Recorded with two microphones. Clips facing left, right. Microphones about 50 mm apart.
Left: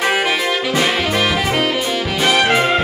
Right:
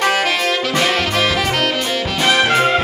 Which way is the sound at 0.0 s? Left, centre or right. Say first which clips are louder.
Even; centre.